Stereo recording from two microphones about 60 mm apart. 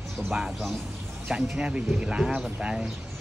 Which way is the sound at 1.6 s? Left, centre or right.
Centre.